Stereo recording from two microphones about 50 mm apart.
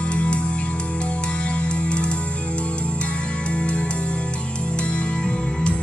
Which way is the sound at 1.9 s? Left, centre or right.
Left.